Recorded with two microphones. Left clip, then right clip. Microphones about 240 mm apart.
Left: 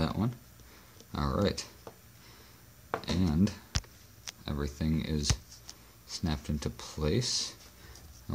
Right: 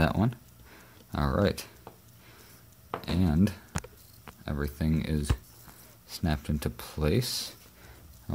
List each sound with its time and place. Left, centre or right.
0.0 s a sound: right
1.1 s speech: centre
2.9 s speech: centre